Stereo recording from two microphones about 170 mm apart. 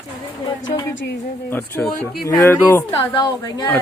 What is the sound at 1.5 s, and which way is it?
A woman's voice, 15° left (ahead or behind).